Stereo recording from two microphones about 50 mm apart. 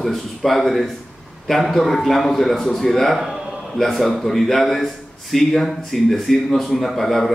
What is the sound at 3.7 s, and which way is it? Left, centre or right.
A man's voice, centre.